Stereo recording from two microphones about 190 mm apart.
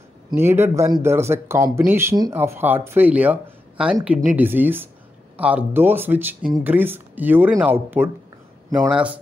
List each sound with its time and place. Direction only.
0.3 s speech: 10° right (ahead or behind)